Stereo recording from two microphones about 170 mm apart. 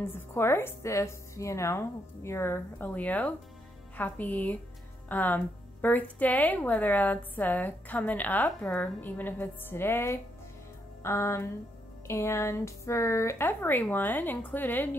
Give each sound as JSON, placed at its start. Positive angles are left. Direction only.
{"t": 0.1, "sound": "speech", "side_deg": 15}